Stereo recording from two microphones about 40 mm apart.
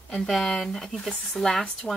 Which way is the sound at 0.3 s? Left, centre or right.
Centre.